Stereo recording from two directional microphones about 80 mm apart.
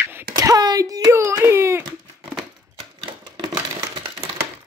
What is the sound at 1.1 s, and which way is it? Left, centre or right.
Speech, right.